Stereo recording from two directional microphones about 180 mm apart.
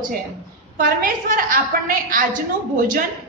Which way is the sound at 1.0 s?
50° right (ahead or behind).